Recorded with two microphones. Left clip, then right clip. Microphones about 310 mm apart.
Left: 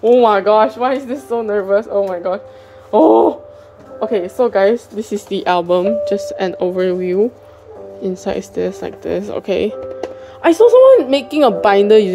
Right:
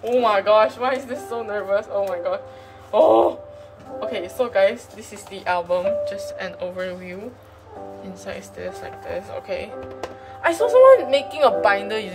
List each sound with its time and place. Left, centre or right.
0.2 s speech: left
8.2 s speech: centre